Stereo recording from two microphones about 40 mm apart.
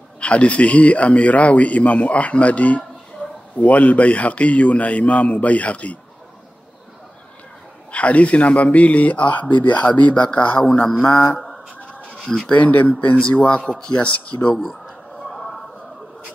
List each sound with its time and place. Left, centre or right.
0.2 s speech: left
3.2 s a sound: left
3.5 s speech: left
7.9 s speech: left
11.3 s a sound: centre
12.2 s speech: centre
12.5 s speech: left
13.3 s a man's voice: left
13.7 s a man's voice: centre
14.0 s speech: left
14.6 s a sound: centre